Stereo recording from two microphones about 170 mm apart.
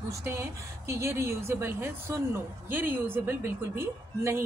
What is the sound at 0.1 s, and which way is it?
A woman's voice, 15° right (ahead or behind).